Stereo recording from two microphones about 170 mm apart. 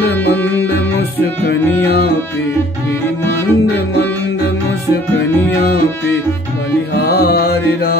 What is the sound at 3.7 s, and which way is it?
Music, 75° left (ahead or behind).